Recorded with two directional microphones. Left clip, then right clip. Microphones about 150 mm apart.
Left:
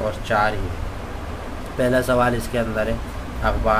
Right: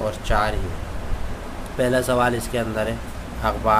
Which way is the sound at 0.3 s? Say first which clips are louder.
Left 3 dB; 20° right (ahead or behind).